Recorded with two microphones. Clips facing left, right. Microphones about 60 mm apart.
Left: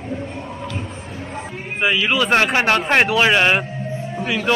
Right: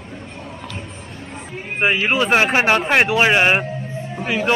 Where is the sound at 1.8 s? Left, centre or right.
Right.